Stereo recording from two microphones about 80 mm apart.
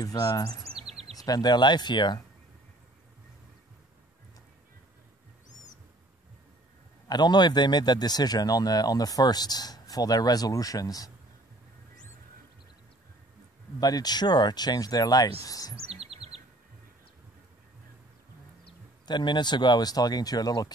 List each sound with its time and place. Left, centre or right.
0.0 s a man's voice: left
7.1 s a man's voice: left
13.7 s a man's voice: left
19.0 s a man's voice: left